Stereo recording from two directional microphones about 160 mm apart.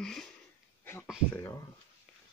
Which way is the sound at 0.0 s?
5° left (ahead or behind).